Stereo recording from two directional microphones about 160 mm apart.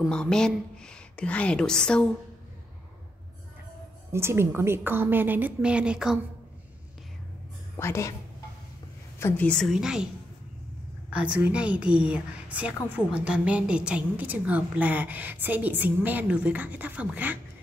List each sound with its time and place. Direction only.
0.0 s a woman's voice: 5° left (ahead or behind)
4.1 s a woman's voice: 15° right (ahead or behind)
7.7 s a woman's voice: 15° left (ahead or behind)
9.2 s a woman's voice: 10° left (ahead or behind)
11.1 s a woman's voice: 5° right (ahead or behind)